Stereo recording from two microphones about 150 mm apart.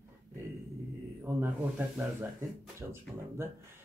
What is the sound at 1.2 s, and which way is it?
Speech, 15° right (ahead or behind).